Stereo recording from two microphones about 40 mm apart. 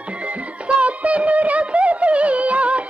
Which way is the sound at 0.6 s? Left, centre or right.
Right.